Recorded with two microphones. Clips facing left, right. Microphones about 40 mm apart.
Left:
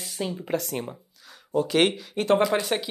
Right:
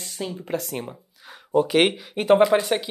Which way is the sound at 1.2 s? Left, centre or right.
Right.